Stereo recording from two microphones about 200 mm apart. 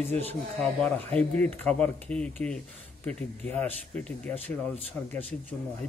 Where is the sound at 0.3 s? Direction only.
5° left (ahead or behind).